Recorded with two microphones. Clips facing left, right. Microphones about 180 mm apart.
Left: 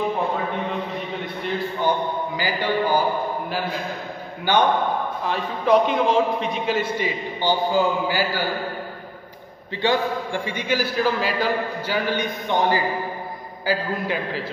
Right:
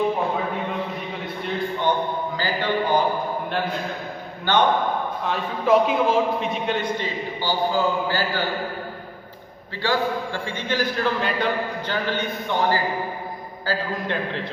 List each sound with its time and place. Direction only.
1.2 s a sound: centre (ahead or behind)
2.3 s speech: 10° left (ahead or behind)
4.5 s a man's voice: 10° left (ahead or behind)
5.2 s a man's voice: centre (ahead or behind)
7.4 s a man's voice: 15° left (ahead or behind)
9.8 s a man's voice: 20° left (ahead or behind); by 12.0 s centre (ahead or behind)
12.1 s a man's voice: 15° left (ahead or behind)
13.7 s a man's voice: 5° left (ahead or behind)